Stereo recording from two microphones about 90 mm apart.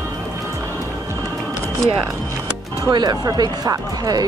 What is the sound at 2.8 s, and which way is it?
Speech, 50° right (ahead or behind).